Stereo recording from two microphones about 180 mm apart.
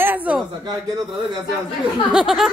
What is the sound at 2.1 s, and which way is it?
Speech, 5° right (ahead or behind).